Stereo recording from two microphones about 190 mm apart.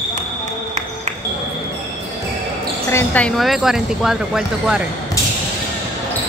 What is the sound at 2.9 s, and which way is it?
Speech, 10° left (ahead or behind).